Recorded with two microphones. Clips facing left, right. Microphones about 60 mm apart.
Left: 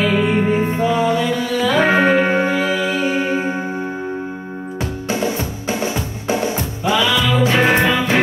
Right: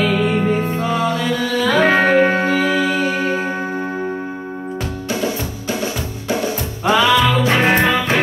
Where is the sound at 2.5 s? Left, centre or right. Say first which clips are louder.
Right 2 dB; right.